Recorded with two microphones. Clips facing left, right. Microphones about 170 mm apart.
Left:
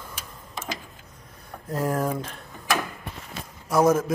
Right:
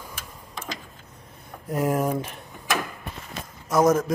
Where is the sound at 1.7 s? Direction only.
15° right (ahead or behind).